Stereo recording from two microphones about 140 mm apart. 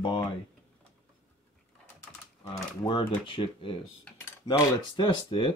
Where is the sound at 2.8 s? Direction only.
35° left (ahead or behind).